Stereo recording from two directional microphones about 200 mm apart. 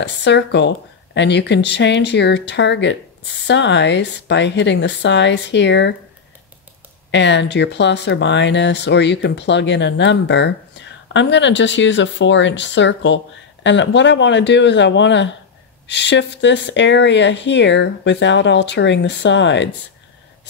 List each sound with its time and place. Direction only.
0.0 s speech: 60° left (ahead or behind)
7.1 s speech: 60° left (ahead or behind)